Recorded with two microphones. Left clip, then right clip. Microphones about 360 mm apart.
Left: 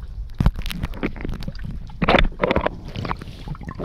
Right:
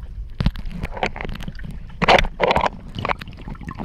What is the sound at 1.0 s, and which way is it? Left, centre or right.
Rowboat, right.